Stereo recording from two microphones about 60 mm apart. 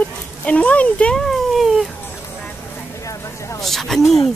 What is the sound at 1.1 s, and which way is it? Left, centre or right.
Speech, centre.